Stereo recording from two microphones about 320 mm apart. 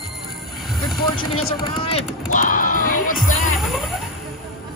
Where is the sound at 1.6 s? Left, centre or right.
Centre.